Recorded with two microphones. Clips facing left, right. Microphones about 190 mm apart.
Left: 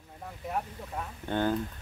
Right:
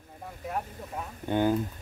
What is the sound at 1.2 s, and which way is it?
Speech, 10° right (ahead or behind).